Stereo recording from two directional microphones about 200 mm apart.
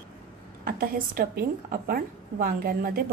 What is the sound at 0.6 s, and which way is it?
A woman's voice, 45° right (ahead or behind).